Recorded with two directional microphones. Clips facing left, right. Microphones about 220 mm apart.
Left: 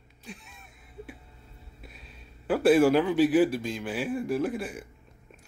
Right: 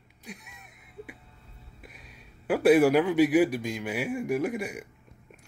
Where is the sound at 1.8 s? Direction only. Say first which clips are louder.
Even; 10° right (ahead or behind).